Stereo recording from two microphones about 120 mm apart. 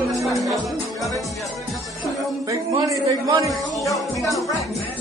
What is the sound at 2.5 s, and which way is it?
A man's voice, 30° right (ahead or behind).